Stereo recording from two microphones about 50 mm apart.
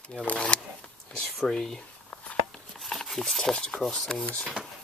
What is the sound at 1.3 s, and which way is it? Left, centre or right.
Speech, centre.